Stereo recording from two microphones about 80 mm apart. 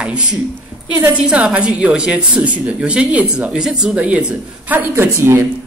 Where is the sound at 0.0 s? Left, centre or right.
Centre.